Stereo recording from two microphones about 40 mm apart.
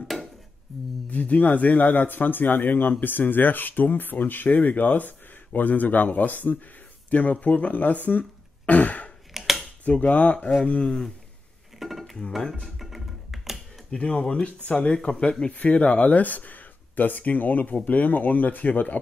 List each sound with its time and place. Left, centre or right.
0.7 s a sound: centre
1.1 s speech: left
1.9 s speech: left
9.3 s a sound: centre
9.8 s speech: left
10.8 s speech: left
11.8 s dishes: centre
12.3 s speech: centre
12.7 s finger snapping: centre
13.8 s speech: centre
14.3 s speech: left